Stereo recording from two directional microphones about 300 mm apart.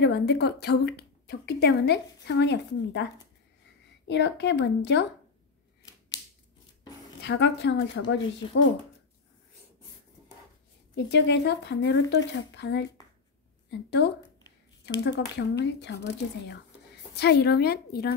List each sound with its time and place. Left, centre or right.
0.0 s a woman's voice: left
4.1 s a woman's voice: left
5.9 s typewriter: centre
7.2 s a woman's voice: left
11.1 s a woman's voice: left